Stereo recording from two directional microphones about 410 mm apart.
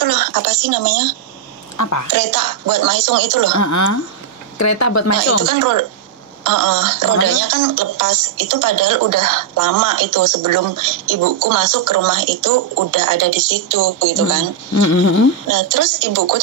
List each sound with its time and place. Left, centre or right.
0.0 s speech: right
1.8 s speech: left
2.1 s speech: right
3.5 s speech: left
5.4 s speech: right
14.7 s speech: left
15.4 s speech: right